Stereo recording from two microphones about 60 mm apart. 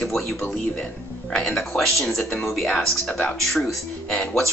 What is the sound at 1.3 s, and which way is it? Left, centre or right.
Speech, centre.